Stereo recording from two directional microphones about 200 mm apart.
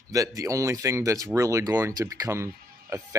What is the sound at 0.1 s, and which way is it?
Speech, 15° right (ahead or behind).